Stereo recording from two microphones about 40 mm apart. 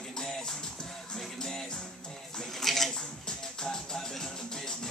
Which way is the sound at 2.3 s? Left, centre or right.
Centre.